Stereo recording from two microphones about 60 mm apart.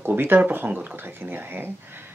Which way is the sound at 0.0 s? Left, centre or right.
Right.